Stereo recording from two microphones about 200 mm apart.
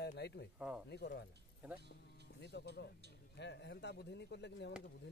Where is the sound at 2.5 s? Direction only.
55° left (ahead or behind).